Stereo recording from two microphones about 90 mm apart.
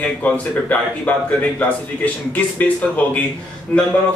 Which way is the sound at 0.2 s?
20° left (ahead or behind).